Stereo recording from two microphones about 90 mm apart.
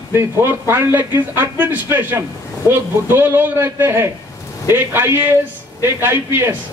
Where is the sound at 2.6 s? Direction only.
40° left (ahead or behind).